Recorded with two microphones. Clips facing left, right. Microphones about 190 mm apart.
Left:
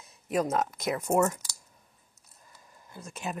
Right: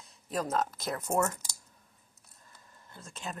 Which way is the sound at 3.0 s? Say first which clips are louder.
Left 5 dB; 20° left (ahead or behind).